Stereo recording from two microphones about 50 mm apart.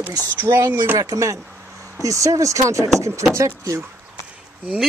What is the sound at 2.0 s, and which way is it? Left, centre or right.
Speech, right.